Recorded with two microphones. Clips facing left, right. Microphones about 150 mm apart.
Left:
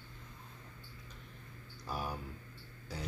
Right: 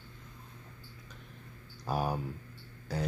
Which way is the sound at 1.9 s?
50° right (ahead or behind).